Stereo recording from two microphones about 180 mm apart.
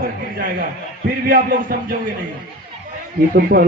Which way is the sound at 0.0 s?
55° right (ahead or behind).